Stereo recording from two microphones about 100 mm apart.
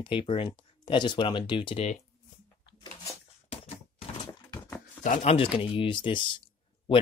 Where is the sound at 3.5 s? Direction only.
85° left.